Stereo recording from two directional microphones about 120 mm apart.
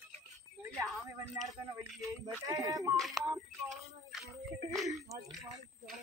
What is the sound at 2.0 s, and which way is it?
Speech, 30° right (ahead or behind).